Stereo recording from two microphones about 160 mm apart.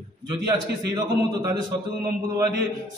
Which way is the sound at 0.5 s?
25° right (ahead or behind).